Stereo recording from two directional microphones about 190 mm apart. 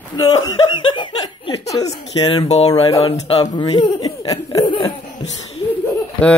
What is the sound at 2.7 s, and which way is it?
Speech, 20° left (ahead or behind).